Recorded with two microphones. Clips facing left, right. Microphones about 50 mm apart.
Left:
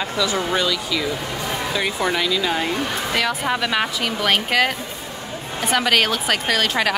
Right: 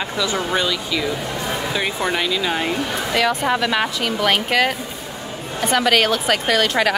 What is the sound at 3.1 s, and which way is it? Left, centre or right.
A woman's voice, centre.